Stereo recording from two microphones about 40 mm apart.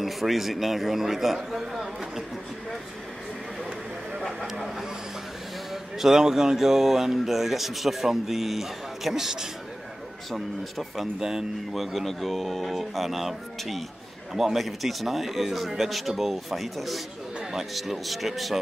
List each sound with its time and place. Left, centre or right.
0.0 s speech: centre
4.2 s speech: centre
5.7 s speech: centre
11.1 s speech: centre
11.7 s speech: centre